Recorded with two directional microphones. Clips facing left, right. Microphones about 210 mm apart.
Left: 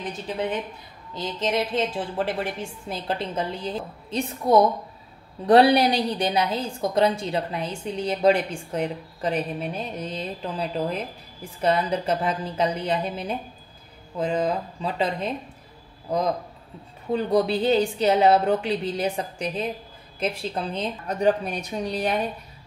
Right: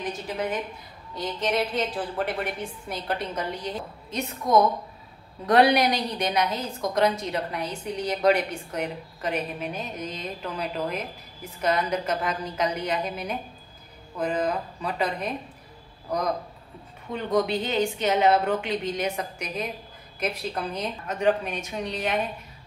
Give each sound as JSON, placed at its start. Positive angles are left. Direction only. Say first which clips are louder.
{"t": 1.1, "sound": "a woman's voice", "louder": "left 1 dB", "side_deg": 25}